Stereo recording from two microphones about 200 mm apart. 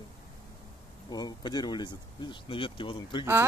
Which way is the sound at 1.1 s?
20° left (ahead or behind).